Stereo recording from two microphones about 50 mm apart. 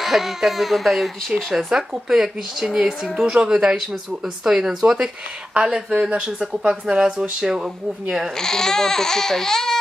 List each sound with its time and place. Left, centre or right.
0.0 s a woman's voice: centre; by 6.2 s right
6.9 s a woman's voice: centre
8.4 s speech: centre